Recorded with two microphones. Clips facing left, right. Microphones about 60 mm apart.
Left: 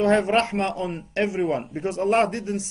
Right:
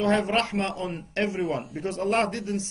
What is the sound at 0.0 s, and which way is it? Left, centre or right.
Speech, left.